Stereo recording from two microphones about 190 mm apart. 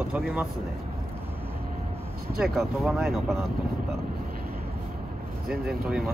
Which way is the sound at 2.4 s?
5° right (ahead or behind).